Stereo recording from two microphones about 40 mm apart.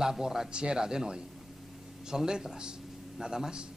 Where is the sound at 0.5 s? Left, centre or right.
Right.